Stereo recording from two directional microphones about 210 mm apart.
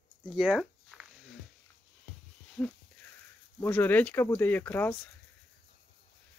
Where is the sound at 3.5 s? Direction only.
10° left (ahead or behind).